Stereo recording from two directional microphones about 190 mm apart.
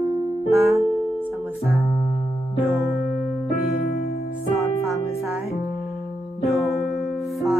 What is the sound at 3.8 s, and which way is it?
Music, 55° left (ahead or behind).